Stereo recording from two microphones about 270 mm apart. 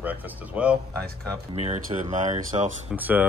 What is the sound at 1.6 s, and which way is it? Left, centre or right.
Speech, right.